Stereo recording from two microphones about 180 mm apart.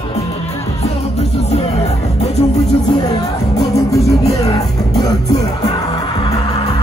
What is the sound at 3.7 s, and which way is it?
Music, 15° left (ahead or behind).